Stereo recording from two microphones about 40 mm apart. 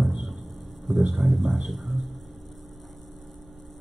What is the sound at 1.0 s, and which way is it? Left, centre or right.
Speech, centre.